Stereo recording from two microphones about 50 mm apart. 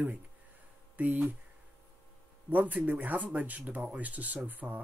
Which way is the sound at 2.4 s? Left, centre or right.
Right.